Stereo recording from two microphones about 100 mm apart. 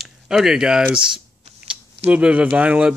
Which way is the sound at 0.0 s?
5° right (ahead or behind).